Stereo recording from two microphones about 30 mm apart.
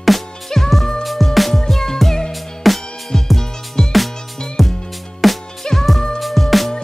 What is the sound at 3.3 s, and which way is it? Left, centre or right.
Music, centre.